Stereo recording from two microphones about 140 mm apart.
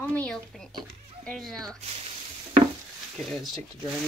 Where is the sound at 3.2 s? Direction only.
Centre (ahead or behind).